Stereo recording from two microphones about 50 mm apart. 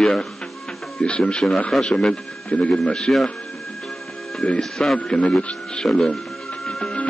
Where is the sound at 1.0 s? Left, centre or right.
Left.